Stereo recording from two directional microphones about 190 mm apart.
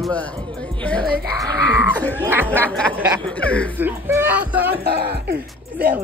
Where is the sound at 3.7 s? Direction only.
10° right (ahead or behind).